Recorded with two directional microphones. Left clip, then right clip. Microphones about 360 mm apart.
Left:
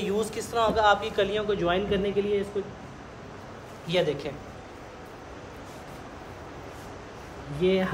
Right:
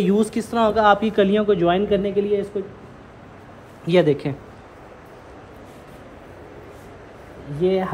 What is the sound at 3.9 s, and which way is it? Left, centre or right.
Speech, centre.